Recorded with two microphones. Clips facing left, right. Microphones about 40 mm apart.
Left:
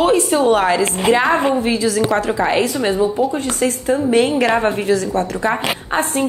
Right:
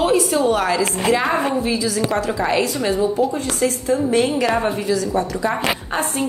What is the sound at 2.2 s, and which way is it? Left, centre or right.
A woman's voice, left.